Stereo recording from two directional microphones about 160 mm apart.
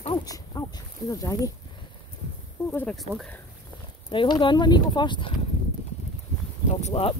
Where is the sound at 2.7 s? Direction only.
10° left (ahead or behind).